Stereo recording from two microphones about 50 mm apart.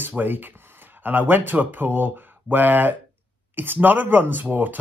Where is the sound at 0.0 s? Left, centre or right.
Right.